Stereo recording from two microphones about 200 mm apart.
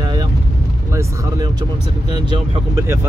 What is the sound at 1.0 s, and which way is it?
Speech, 20° right (ahead or behind).